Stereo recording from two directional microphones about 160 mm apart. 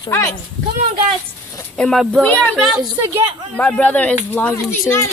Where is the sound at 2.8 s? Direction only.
20° right (ahead or behind).